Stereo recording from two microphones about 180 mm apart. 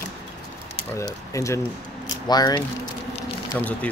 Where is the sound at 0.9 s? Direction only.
15° left (ahead or behind).